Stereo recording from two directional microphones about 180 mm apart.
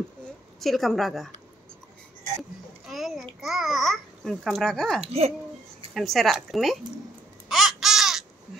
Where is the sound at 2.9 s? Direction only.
Centre (ahead or behind).